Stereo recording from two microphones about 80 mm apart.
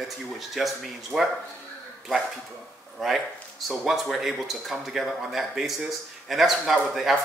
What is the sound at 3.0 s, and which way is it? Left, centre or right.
Speech, centre.